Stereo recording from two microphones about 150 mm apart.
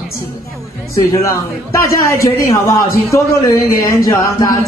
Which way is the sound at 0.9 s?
20° left (ahead or behind).